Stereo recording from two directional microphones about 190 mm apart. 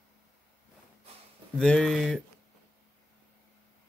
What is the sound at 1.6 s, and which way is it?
Speech, 5° left (ahead or behind).